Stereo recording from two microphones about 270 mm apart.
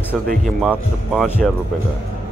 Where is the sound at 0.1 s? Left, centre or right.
Centre.